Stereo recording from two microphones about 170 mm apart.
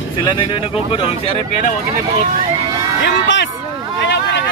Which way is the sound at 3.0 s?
90° left.